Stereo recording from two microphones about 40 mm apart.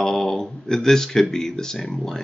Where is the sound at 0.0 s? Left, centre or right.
Centre.